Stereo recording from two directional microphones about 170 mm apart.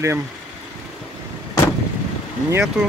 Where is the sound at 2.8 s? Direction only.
5° right (ahead or behind).